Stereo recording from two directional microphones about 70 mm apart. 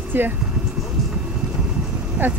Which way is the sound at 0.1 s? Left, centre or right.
Right.